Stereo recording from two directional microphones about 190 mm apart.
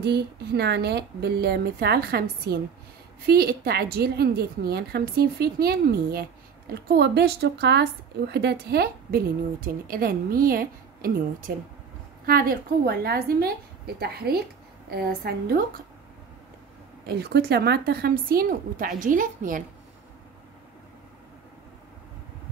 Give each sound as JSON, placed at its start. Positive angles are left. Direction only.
{"t": 0.0, "sound": "a woman's voice", "side_deg": -60}
{"t": 17.1, "sound": "a woman's voice", "side_deg": -55}